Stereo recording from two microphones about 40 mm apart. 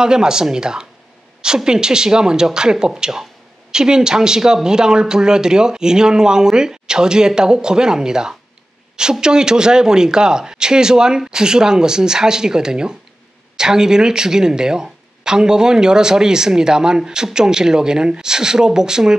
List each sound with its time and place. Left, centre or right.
0.0 s speech: centre